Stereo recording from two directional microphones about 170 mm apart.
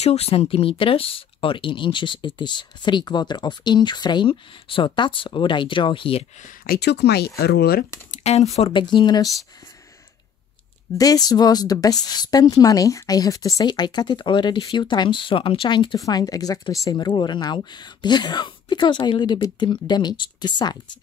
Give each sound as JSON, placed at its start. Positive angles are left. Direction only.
{"t": 0.0, "sound": "speech", "side_deg": 35}
{"t": 6.4, "sound": "speech", "side_deg": 60}
{"t": 8.1, "sound": "speech", "side_deg": 40}
{"t": 11.0, "sound": "speech", "side_deg": 20}